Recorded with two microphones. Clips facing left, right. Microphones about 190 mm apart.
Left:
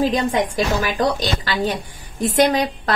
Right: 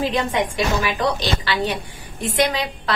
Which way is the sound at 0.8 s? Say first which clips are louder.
Left 1 dB; 40° left (ahead or behind).